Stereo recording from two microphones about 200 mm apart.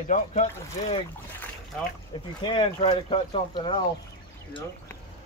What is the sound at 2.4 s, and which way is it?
Speech, 25° left (ahead or behind).